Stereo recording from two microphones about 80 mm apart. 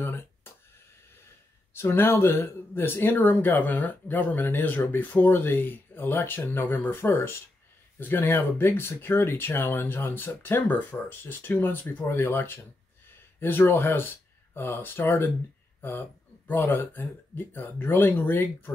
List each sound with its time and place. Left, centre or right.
0.0 s a sound: left
1.7 s speech: left
16.4 s speech: left